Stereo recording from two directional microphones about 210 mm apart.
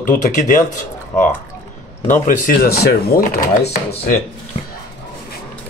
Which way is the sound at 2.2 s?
45° left (ahead or behind).